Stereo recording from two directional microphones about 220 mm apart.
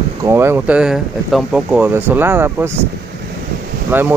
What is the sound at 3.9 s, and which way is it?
Speech, 10° right (ahead or behind).